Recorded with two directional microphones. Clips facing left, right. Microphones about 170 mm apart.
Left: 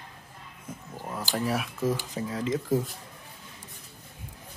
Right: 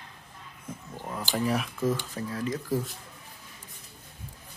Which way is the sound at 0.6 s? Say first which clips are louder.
Even; 5° left (ahead or behind).